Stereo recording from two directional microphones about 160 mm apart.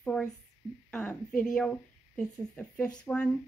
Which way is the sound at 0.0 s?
5° left (ahead or behind).